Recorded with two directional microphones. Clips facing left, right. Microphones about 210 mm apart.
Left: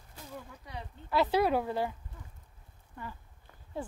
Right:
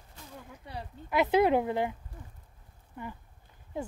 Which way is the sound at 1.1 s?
20° right (ahead or behind).